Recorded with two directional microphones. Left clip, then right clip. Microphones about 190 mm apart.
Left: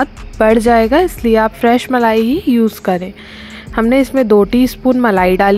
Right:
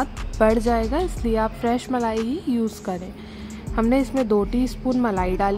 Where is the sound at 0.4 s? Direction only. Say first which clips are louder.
Left 10 dB; 35° left (ahead or behind).